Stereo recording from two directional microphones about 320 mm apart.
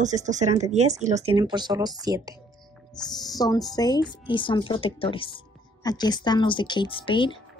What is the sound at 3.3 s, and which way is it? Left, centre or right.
Speech, centre.